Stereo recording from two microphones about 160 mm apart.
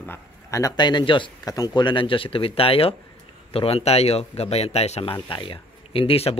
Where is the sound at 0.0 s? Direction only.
15° left (ahead or behind).